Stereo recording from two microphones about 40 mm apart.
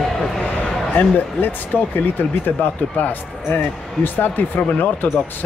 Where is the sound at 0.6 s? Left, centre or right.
Left.